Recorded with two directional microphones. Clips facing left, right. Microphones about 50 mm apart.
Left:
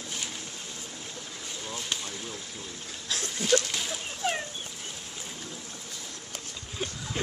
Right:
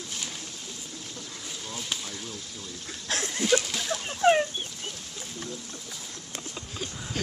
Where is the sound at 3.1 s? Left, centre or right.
Right.